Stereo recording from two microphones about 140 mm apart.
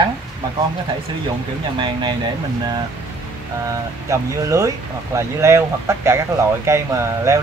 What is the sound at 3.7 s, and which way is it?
Speech, 20° right (ahead or behind).